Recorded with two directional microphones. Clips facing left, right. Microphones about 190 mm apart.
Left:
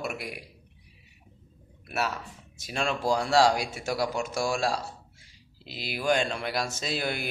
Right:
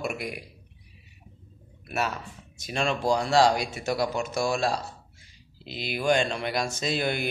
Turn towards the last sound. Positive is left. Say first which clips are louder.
# right 4 dB
turn(degrees=5)  # may be behind; listen again after turning